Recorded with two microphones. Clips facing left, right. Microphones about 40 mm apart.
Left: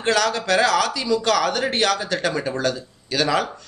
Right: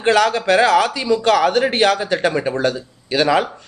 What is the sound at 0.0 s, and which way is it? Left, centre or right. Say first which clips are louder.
A man's voice: right 5 dB; right.